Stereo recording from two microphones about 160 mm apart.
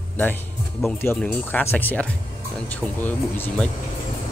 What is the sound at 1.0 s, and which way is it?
Speech, 10° left (ahead or behind).